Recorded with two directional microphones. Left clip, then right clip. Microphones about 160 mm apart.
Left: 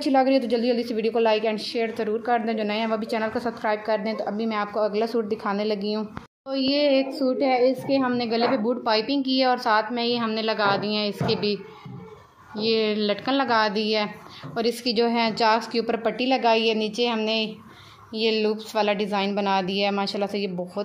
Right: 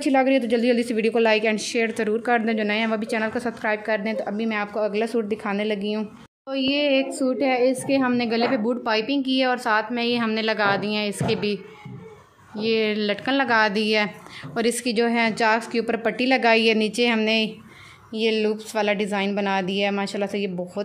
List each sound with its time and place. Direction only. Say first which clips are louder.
0.1 s a woman's voice: even; 30° right (ahead or behind)
6.7 s a sound: even; 15° right (ahead or behind)
7.2 s a woman's voice: even; 25° right (ahead or behind)
18.1 s a woman's voice: right 1 dB; 25° right (ahead or behind)